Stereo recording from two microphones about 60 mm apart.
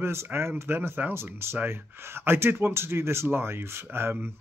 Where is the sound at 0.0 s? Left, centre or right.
Right.